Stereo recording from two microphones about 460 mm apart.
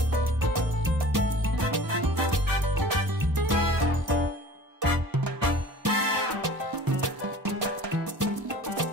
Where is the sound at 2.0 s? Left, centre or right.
Right.